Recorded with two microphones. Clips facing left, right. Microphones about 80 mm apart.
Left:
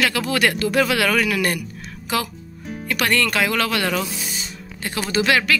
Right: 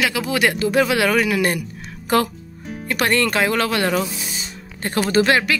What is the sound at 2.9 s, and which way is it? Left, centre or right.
Speech, right.